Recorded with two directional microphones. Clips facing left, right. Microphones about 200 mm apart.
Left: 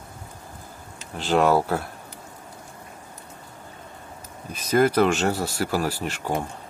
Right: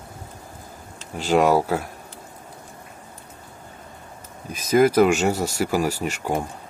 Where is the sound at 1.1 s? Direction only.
10° right (ahead or behind).